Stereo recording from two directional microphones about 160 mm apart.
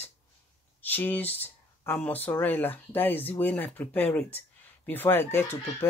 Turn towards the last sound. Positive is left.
turn(degrees=15)  # may be behind; listen again after turning